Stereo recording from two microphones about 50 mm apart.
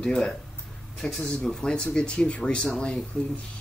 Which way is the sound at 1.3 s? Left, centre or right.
Centre.